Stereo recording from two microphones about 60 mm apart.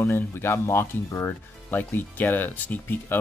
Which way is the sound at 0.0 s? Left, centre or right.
Left.